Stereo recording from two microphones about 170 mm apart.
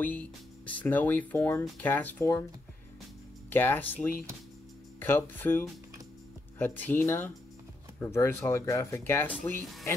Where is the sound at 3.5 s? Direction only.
10° left (ahead or behind).